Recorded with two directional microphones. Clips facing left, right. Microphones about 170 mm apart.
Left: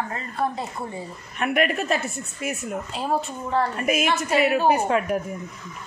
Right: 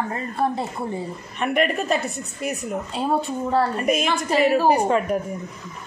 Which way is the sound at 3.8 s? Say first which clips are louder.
Right 1 dB; 5° left (ahead or behind).